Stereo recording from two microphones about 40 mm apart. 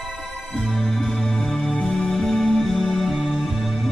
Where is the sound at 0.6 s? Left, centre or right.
Centre.